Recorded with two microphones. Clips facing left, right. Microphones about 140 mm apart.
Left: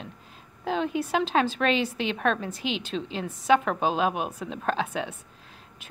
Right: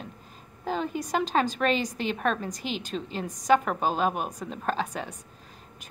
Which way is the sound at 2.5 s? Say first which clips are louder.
Left 2 dB; 40° right (ahead or behind).